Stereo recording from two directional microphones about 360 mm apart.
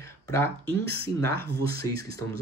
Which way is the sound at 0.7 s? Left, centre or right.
Right.